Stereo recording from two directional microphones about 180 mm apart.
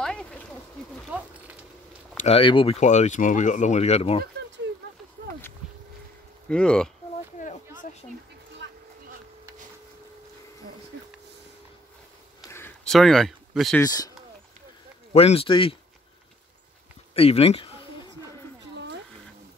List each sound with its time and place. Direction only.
0.0 s a sound: 5° left (ahead or behind)
1.1 s horse: 5° right (ahead or behind)
2.2 s speech: 30° left (ahead or behind)
2.8 s speech: 40° left (ahead or behind)
6.5 s speech: 5° left (ahead or behind)
8.6 s a sound: 80° right
10.9 s a sound: 65° right (ahead or behind)
12.4 s a sound: 10° left (ahead or behind)
12.9 s speech: centre (ahead or behind)
13.7 s speech: 20° left (ahead or behind)
15.1 s speech: 30° left (ahead or behind)
17.1 s speech: 35° left (ahead or behind)